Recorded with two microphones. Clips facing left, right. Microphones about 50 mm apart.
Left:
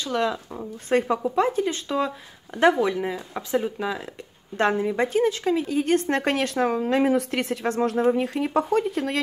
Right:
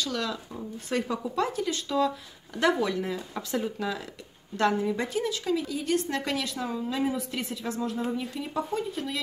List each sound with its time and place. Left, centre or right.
0.0 s speech: left
4.6 s speech: left